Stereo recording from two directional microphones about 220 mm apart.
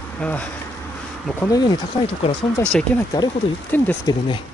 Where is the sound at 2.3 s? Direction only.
25° left (ahead or behind).